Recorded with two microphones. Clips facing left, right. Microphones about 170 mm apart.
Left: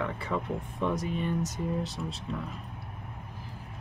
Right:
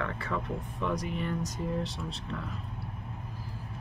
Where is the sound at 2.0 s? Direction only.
10° left (ahead or behind).